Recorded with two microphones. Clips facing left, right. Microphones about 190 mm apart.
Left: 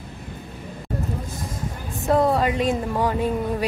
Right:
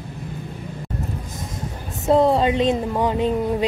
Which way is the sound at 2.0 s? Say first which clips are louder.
Right 3 dB; 25° right (ahead or behind).